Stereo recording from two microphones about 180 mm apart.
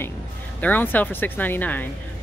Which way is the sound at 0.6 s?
10° left (ahead or behind).